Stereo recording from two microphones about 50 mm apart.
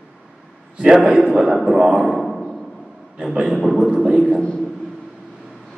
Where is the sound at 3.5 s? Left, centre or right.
Centre.